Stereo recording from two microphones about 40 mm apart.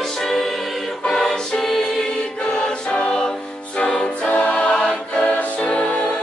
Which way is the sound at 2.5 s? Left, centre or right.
Left.